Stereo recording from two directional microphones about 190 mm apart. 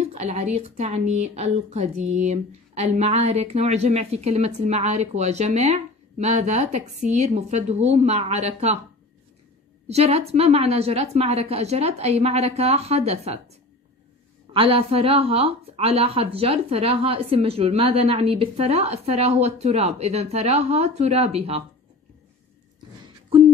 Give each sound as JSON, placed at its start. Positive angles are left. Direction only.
{"t": 0.0, "sound": "a woman's voice", "side_deg": -35}
{"t": 9.8, "sound": "a woman's voice", "side_deg": -35}
{"t": 14.5, "sound": "a woman's voice", "side_deg": -30}